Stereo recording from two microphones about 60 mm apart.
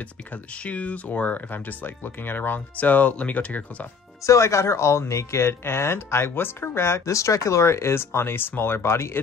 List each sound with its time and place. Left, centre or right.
0.7 s speech: left
4.3 s speech: left